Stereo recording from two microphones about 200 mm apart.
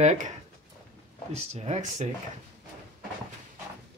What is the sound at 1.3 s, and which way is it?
Speech, 35° right (ahead or behind).